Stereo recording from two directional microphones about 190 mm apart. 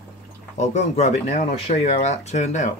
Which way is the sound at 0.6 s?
40° left (ahead or behind).